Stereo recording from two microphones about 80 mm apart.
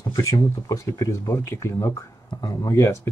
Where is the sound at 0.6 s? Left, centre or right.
Left.